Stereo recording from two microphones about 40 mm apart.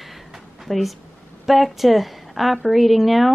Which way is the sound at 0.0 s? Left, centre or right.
Centre.